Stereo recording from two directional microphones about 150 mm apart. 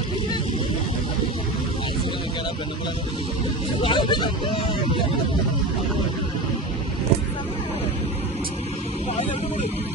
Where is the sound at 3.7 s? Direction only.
35° left (ahead or behind).